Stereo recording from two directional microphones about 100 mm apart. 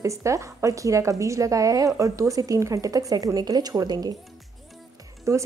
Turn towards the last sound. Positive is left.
turn(degrees=-30)  # may be behind; listen again after turning